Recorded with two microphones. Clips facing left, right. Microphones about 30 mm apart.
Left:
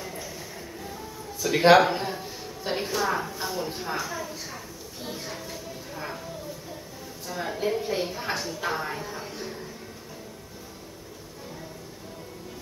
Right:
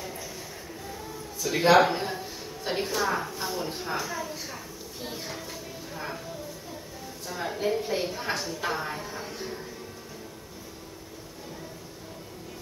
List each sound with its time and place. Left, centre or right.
1.4 s speech: centre
1.8 s a woman's voice: centre
5.0 s a sound: centre
7.2 s a woman's voice: centre